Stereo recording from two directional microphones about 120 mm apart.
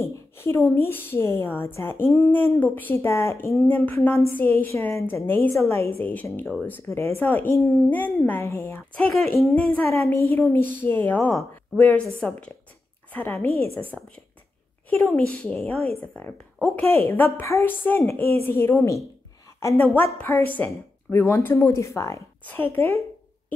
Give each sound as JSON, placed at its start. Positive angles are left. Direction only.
{"t": 0.0, "sound": "a woman's voice", "side_deg": 20}
{"t": 9.1, "sound": "speech", "side_deg": 0}
{"t": 9.8, "sound": "a woman's voice", "side_deg": 20}
{"t": 13.9, "sound": "a woman's voice", "side_deg": 5}
{"t": 16.8, "sound": "a woman's voice", "side_deg": 20}